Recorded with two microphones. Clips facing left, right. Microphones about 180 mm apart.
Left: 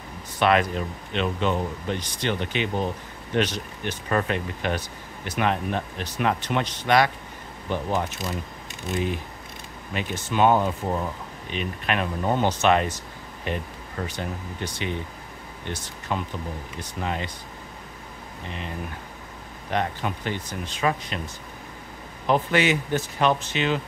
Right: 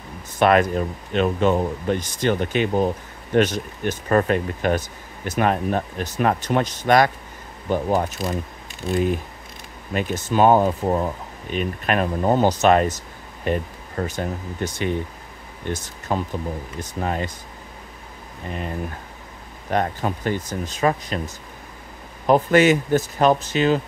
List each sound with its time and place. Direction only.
0.4 s speech: 45° right (ahead or behind)
9.9 s speech: 40° right (ahead or behind)
19.7 s speech: 45° right (ahead or behind)
22.2 s speech: 45° right (ahead or behind)